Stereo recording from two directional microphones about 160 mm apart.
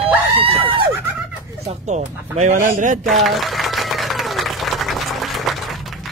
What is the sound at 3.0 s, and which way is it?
Applause, centre (ahead or behind).